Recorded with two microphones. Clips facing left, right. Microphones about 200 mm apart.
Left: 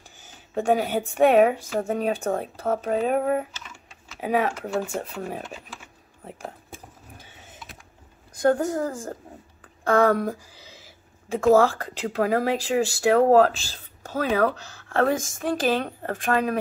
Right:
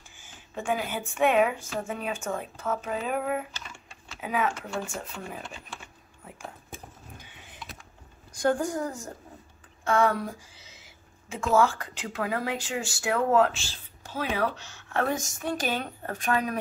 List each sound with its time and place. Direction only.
0.2 s a woman's voice: 40° left (ahead or behind)
4.9 s speech: 55° left (ahead or behind)
8.5 s a woman's voice: 25° left (ahead or behind)
8.8 s speech: 50° left (ahead or behind)
9.8 s a sound: 40° left (ahead or behind)
11.5 s a woman's voice: 35° left (ahead or behind)
14.1 s a woman's voice: 45° left (ahead or behind)